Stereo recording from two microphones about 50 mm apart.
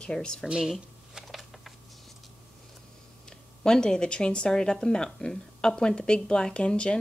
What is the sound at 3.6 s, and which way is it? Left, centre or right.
Speech, centre.